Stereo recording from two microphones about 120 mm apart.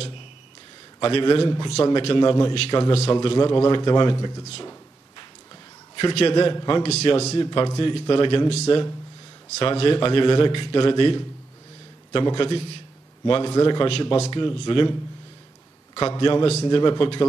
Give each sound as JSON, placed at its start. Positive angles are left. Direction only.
{"t": 0.9, "sound": "a man's voice", "side_deg": 45}
{"t": 5.9, "sound": "a man's voice", "side_deg": 45}
{"t": 6.8, "sound": "a man's voice", "side_deg": 55}
{"t": 7.4, "sound": "a man's voice", "side_deg": 40}
{"t": 8.6, "sound": "a man's voice", "side_deg": 30}
{"t": 9.6, "sound": "a man's voice", "side_deg": 50}
{"t": 13.5, "sound": "a man's voice", "side_deg": 30}
{"t": 13.7, "sound": "a man's voice", "side_deg": 45}
{"t": 14.3, "sound": "a man's voice", "side_deg": 40}
{"t": 16.2, "sound": "a man's voice", "side_deg": 45}